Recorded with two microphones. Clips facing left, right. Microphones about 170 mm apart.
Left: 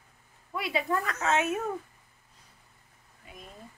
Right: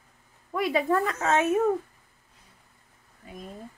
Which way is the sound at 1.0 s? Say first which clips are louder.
Right 4 dB; 30° right (ahead or behind).